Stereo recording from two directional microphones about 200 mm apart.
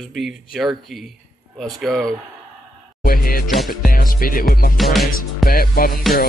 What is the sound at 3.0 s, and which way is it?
Music, 45° left (ahead or behind).